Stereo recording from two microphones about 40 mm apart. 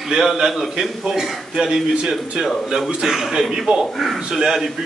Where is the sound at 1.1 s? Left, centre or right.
Centre.